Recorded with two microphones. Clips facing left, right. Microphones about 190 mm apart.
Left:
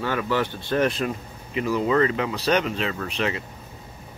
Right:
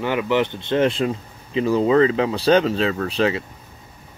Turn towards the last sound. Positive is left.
turn(degrees=-35)  # may be behind; listen again after turning